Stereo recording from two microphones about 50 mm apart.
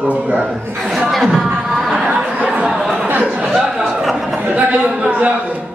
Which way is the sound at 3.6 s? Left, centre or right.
Centre.